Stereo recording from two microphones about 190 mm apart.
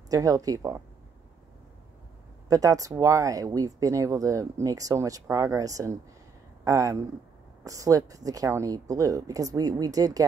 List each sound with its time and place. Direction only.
0.1 s speech: 20° right (ahead or behind)
2.4 s speech: 20° right (ahead or behind)